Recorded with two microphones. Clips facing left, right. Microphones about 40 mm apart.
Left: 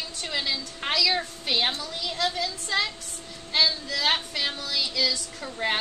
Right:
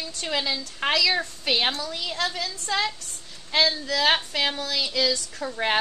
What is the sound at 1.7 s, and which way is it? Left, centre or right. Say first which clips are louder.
A woman's voice: right 2 dB; right.